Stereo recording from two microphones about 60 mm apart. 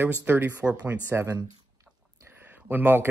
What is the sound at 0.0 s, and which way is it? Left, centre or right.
Speech, right.